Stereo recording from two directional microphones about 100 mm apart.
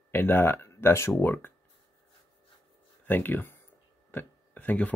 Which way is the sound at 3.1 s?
20° left (ahead or behind).